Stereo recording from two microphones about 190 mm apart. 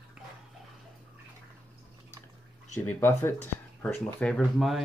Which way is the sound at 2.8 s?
10° left (ahead or behind).